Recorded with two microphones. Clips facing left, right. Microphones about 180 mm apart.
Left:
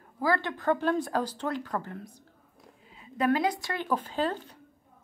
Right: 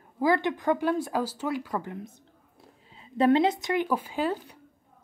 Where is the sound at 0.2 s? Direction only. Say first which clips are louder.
Right 4 dB; 20° right (ahead or behind).